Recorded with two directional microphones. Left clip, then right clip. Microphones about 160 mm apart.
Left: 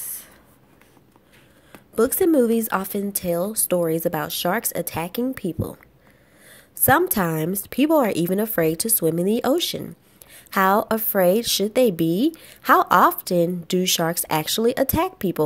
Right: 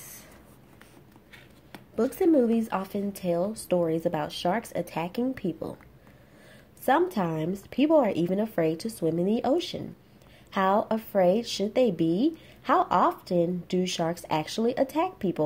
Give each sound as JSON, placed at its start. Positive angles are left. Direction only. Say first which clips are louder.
{"t": 2.0, "sound": "a woman's voice", "louder": "left 5 dB", "side_deg": 35}